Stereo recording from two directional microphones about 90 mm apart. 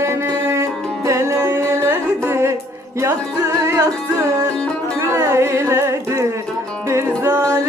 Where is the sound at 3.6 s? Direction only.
35° right (ahead or behind).